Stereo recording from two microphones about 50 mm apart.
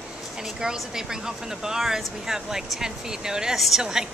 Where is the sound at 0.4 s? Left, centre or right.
Centre.